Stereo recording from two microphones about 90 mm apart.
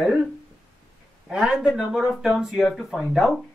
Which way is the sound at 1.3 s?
10° right (ahead or behind).